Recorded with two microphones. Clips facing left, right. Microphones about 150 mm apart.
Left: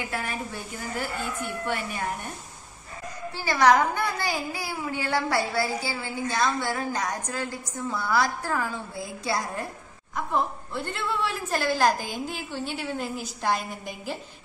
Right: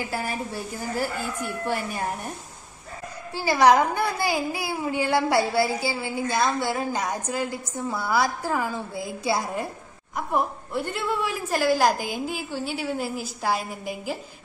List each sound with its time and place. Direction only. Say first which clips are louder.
0.1 s a woman's voice: right 3 dB; 35° right (ahead or behind)
3.9 s a woman's voice: right 3 dB; 10° right (ahead or behind)